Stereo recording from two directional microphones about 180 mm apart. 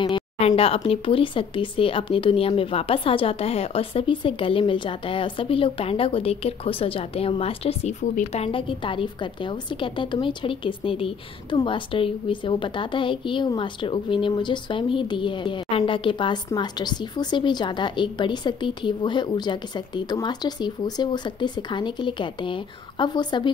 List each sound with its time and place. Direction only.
0.1 s speech: 35° left (ahead or behind)